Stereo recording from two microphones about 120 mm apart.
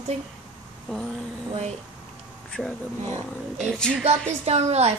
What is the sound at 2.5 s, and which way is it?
Speech, 10° left (ahead or behind).